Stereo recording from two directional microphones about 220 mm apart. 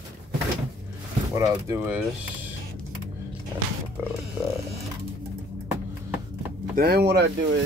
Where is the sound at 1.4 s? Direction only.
10° right (ahead or behind).